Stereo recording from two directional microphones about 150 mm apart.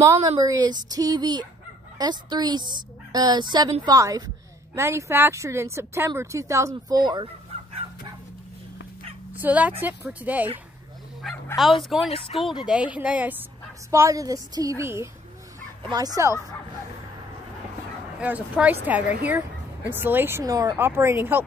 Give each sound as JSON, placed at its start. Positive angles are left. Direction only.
{"t": 0.0, "sound": "speech", "side_deg": -20}
{"t": 9.3, "sound": "a woman's voice", "side_deg": -10}
{"t": 11.5, "sound": "speech", "side_deg": 0}
{"t": 12.1, "sound": "speech", "side_deg": 40}
{"t": 12.6, "sound": "a woman's voice", "side_deg": -5}
{"t": 18.2, "sound": "a woman's voice", "side_deg": -10}